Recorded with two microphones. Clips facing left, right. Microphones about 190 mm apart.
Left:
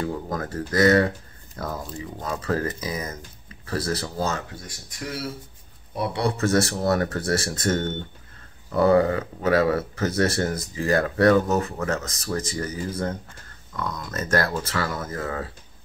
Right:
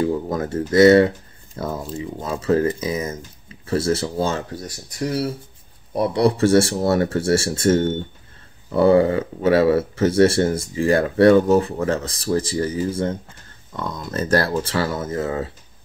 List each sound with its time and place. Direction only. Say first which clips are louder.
0.0 s speech: right 7 dB; 25° right (ahead or behind)